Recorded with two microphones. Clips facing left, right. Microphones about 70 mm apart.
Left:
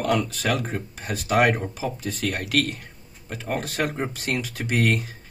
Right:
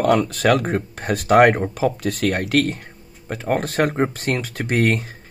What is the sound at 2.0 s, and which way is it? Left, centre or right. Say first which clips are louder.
Speech: right 7 dB; right.